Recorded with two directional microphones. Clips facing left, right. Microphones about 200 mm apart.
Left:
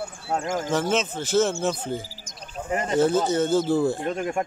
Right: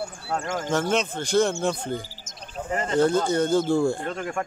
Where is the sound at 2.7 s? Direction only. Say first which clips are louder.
Left 1 dB; 15° left (ahead or behind).